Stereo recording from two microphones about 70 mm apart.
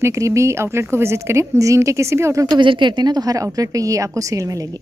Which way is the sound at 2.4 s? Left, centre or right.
Right.